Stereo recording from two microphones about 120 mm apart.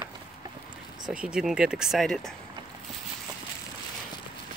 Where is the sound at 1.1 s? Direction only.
5° right (ahead or behind).